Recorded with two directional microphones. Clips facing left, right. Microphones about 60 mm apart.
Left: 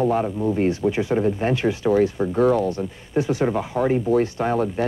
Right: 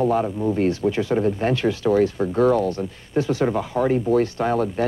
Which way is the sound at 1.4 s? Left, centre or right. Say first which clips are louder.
Even; left.